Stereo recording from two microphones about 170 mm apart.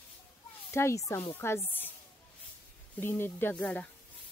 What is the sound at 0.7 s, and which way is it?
Speech, 15° left (ahead or behind).